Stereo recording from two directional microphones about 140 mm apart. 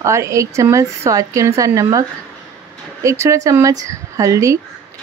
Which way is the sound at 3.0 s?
20° right (ahead or behind).